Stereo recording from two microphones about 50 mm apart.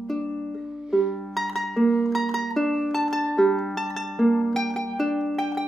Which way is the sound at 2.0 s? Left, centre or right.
Centre.